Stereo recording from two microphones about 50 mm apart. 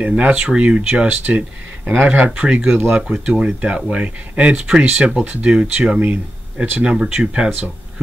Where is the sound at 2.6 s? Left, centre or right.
Right.